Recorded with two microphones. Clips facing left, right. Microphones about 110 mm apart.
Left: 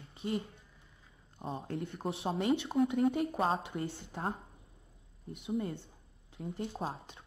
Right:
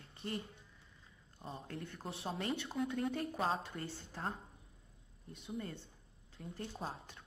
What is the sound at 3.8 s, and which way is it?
Speech, 70° left (ahead or behind).